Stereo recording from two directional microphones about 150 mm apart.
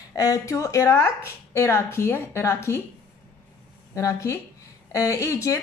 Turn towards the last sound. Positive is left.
turn(degrees=20)  # may be behind; listen again after turning